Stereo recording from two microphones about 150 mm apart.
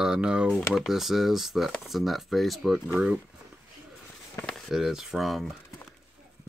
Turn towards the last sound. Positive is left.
turn(degrees=0)  # may be behind; listen again after turning